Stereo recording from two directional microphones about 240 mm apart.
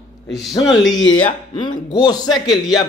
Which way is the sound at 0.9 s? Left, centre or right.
Centre.